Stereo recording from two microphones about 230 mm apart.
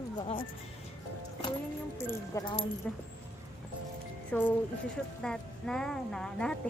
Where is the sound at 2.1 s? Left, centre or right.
Centre.